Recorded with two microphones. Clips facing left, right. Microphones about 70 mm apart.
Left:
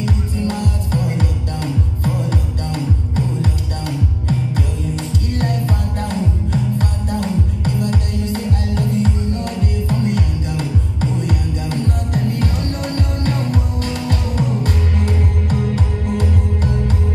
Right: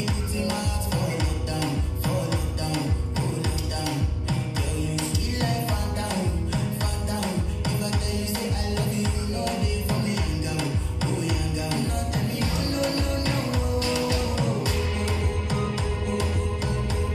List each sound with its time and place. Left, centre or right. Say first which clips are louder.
0.0 s music: left 7 dB; left
4.9 s music: left 5 dB; left